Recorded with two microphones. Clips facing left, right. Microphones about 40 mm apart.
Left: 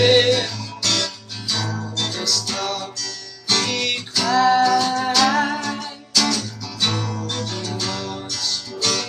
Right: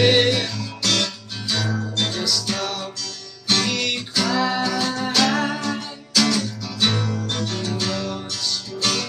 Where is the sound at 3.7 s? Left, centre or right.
Centre.